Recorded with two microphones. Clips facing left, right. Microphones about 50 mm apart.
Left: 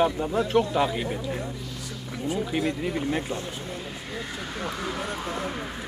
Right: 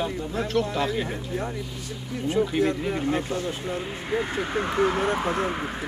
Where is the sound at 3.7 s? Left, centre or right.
Right.